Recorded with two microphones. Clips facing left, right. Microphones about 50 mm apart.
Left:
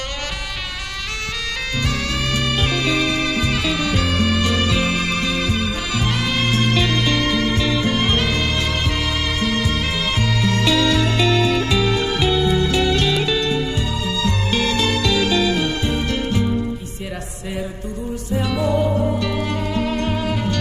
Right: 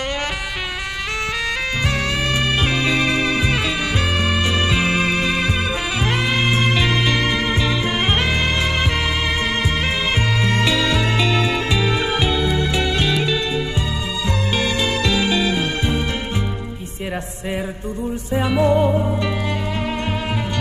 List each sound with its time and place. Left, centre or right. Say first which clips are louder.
1.9 s music: right 1 dB; right
18.3 s music: right 3 dB; right